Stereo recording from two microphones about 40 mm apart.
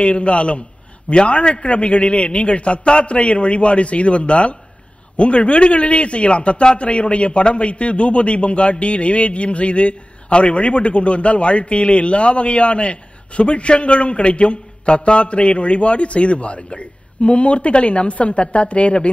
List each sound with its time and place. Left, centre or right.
0.0 s a man's voice: left